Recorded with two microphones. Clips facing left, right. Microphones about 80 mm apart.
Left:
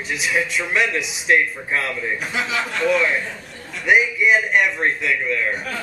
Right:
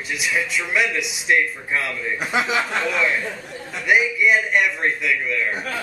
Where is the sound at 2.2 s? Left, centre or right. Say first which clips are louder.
Right 3 dB; centre.